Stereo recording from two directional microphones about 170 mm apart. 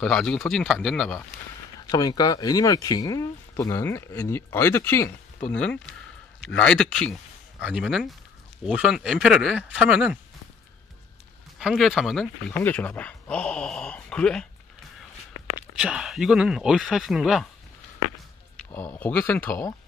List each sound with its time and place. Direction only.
0.0 s speech: 5° left (ahead or behind)
1.9 s speech: 20° left (ahead or behind); by 7.2 s 5° left (ahead or behind)
7.6 s speech: 5° right (ahead or behind)
11.6 s speech: centre (ahead or behind)
15.8 s speech: 5° right (ahead or behind)
18.7 s speech: 10° left (ahead or behind)